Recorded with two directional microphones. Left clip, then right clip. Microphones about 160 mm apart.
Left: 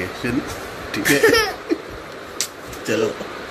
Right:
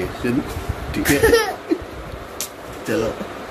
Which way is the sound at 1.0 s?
20° right (ahead or behind).